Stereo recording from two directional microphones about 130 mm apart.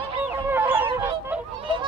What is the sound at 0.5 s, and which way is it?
Goose, 15° right (ahead or behind).